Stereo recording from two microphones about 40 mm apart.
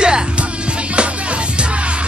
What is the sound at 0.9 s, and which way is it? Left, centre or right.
Music, right.